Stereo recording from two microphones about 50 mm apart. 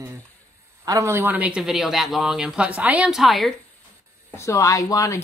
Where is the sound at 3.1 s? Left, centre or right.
Centre.